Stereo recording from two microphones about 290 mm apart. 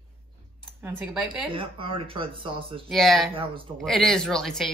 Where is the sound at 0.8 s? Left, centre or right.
Centre.